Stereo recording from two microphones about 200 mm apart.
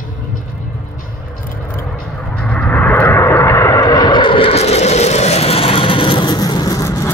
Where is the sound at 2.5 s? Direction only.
10° left (ahead or behind).